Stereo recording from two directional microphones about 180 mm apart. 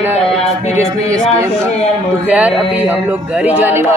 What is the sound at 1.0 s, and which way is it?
Speech, 15° right (ahead or behind).